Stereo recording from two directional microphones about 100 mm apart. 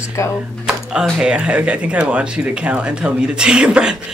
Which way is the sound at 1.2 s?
10° right (ahead or behind).